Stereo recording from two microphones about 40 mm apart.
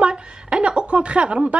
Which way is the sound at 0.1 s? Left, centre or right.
Right.